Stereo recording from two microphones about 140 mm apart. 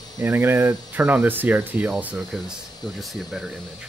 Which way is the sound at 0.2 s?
20° right (ahead or behind).